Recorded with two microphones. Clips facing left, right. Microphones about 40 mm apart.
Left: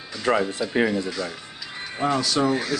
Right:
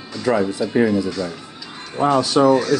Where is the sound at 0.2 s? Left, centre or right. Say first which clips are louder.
Right 3 dB; left.